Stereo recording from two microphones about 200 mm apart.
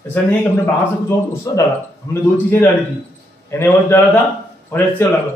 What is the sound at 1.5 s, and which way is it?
Speech, 15° left (ahead or behind).